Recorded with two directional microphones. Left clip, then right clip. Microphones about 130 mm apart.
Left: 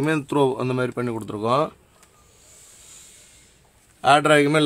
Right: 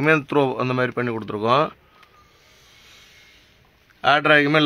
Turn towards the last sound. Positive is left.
turn(degrees=15)  # may be behind; listen again after turning